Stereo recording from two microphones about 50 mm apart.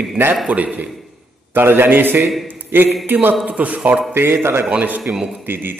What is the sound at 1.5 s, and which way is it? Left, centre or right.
A man's voice, right.